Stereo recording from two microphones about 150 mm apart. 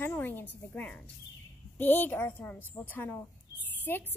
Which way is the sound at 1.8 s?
10° left (ahead or behind).